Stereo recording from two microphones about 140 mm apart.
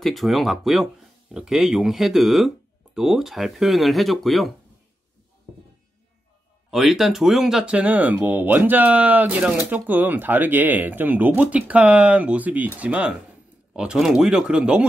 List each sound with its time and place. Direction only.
0.0 s speech: centre (ahead or behind)
6.7 s speech: centre (ahead or behind)